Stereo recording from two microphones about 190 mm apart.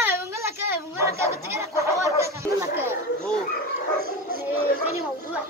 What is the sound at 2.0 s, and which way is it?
Chatter, 15° right (ahead or behind).